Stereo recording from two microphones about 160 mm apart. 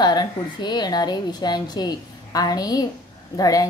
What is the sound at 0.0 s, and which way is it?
A woman's voice, 25° left (ahead or behind).